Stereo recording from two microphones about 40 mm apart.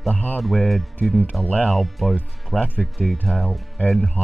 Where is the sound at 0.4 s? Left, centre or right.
Centre.